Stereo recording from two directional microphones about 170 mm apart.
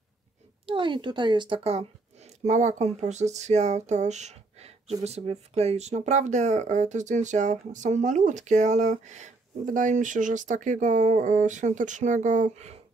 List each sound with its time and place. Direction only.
0.7 s speech: 30° right (ahead or behind)